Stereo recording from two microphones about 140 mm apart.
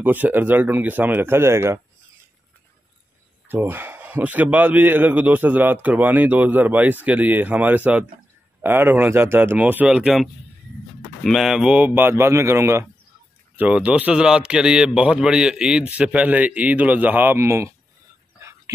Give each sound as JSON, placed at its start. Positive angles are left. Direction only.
{"t": 0.0, "sound": "a man's voice", "side_deg": -15}
{"t": 3.4, "sound": "a man's voice", "side_deg": -15}